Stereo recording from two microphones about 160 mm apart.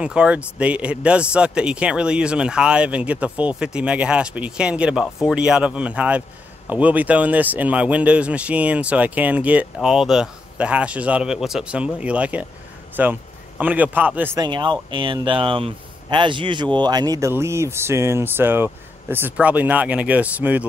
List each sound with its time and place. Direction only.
0.0 s a man's voice: 5° right (ahead or behind)
14.4 s speech: 30° right (ahead or behind); by 20.6 s 10° right (ahead or behind)